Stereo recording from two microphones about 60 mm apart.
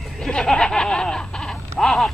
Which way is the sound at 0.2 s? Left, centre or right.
Centre.